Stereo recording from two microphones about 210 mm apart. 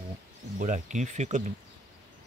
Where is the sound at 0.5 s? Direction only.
35° right (ahead or behind).